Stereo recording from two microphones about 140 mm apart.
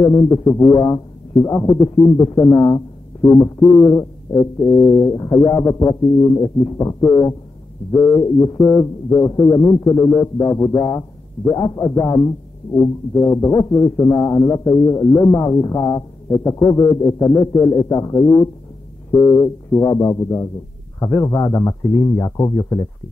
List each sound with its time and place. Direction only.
0.0 s speech: 25° left (ahead or behind)